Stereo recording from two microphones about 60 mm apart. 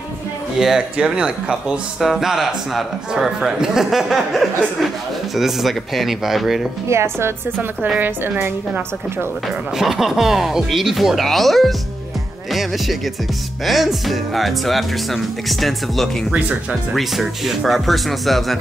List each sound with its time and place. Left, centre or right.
0.6 s a man's voice: centre
6.9 s a woman's voice: right
8.0 s a woman's voice: right
9.8 s a man's voice: centre